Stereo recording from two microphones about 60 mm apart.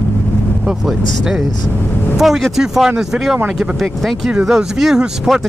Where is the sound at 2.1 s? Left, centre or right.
Centre.